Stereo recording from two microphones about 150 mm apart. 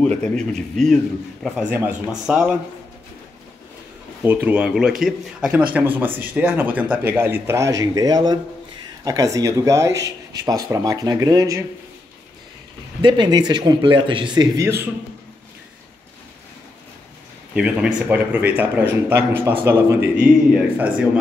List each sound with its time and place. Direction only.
0.0 s a man's voice: 5° left (ahead or behind)
4.2 s speech: 15° right (ahead or behind)
13.0 s speech: 30° right (ahead or behind)
17.6 s speech: 5° right (ahead or behind)